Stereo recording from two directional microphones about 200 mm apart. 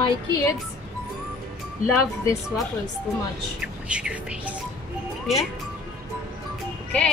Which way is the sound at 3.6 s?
5° right (ahead or behind).